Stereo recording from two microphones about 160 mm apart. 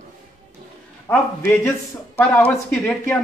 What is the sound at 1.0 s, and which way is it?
Speech, 15° left (ahead or behind).